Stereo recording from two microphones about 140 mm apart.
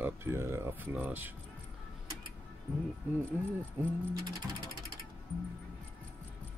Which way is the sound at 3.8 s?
15° right (ahead or behind).